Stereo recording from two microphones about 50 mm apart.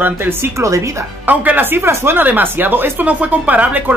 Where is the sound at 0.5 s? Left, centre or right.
Right.